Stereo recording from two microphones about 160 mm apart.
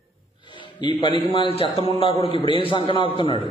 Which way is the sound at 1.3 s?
30° left (ahead or behind).